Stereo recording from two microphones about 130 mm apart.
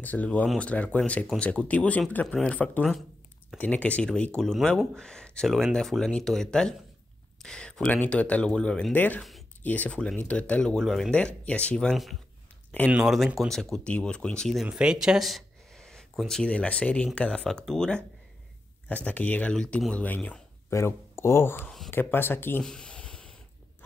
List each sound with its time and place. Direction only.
0.0 s speech: 10° left (ahead or behind)
20.7 s speech: 20° left (ahead or behind)
21.6 s speech: centre (ahead or behind)
21.9 s speech: 15° left (ahead or behind)
22.6 s a sound: 5° left (ahead or behind)